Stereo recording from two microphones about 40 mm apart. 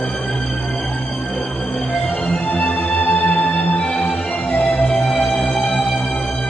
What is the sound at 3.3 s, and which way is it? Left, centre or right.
Music, left.